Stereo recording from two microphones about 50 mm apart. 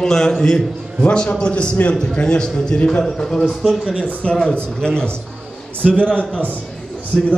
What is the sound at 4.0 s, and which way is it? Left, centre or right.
A man's voice, left.